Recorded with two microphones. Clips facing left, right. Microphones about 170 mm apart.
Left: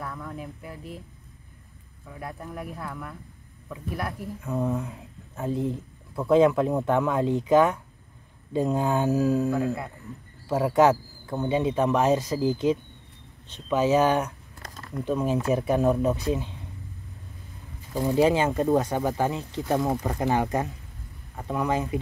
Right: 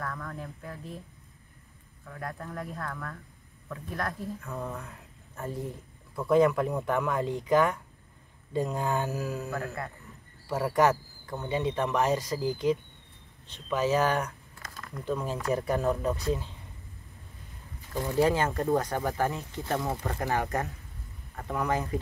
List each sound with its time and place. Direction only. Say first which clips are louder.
0.0 s speech: left 2 dB; 10° left (ahead or behind)
2.0 s speech: left 1 dB; 10° left (ahead or behind)
9.4 s speech: left 9 dB; 10° left (ahead or behind)
11.3 s speech: left 5 dB; 20° left (ahead or behind)
17.9 s speech: left 4 dB; 20° left (ahead or behind)